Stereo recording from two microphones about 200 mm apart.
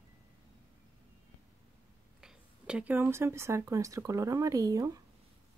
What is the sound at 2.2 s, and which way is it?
Speech, 5° right (ahead or behind).